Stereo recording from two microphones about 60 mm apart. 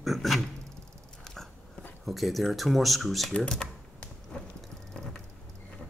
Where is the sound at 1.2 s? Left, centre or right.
Centre.